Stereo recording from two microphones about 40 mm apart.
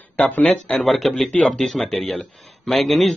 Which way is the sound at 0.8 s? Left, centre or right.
Centre.